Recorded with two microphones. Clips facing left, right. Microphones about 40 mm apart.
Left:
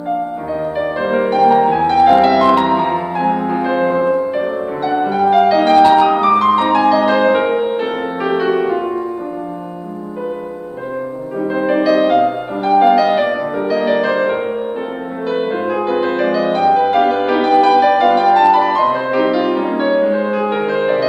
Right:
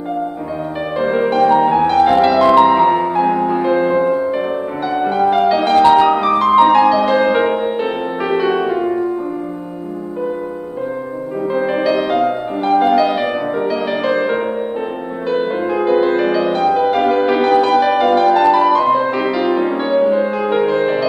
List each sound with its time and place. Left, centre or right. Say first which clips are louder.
0.7 s music: right 1 dB; centre
11.4 s music: left 2 dB; centre
15.2 s music: even; centre